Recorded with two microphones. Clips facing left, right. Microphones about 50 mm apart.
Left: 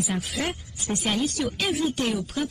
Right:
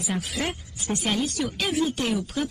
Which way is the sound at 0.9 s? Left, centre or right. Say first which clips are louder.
Even; centre.